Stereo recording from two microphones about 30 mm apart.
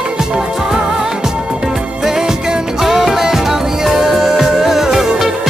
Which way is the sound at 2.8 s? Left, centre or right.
Centre.